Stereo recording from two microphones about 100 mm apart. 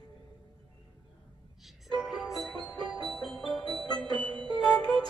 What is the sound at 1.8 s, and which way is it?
Music, centre (ahead or behind).